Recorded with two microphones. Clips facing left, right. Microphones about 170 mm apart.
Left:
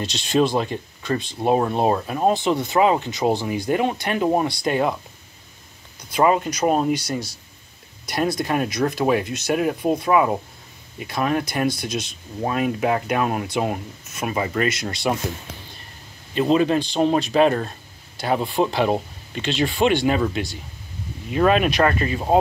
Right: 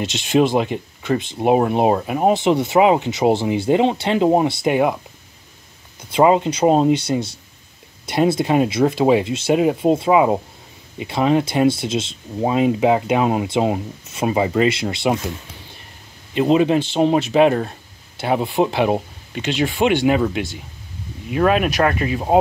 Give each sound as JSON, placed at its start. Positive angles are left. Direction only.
{"t": 0.0, "sound": "speech", "side_deg": -15}
{"t": 5.9, "sound": "speech", "side_deg": -25}
{"t": 16.3, "sound": "speech", "side_deg": -15}